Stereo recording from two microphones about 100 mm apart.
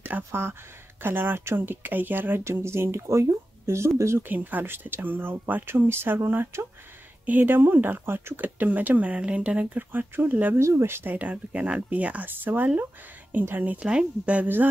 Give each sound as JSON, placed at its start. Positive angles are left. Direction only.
{"t": 0.0, "sound": "speech", "side_deg": -20}